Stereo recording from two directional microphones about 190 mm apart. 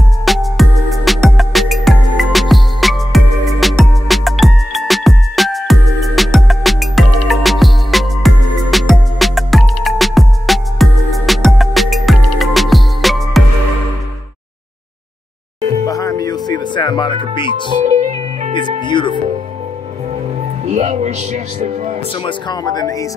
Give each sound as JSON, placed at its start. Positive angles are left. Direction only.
{"t": 0.2, "sound": "music", "side_deg": 0}
{"t": 15.8, "sound": "music", "side_deg": 15}
{"t": 17.8, "sound": "music", "side_deg": -35}
{"t": 18.9, "sound": "music", "side_deg": 25}
{"t": 20.6, "sound": "music", "side_deg": -35}
{"t": 22.2, "sound": "speech", "side_deg": 20}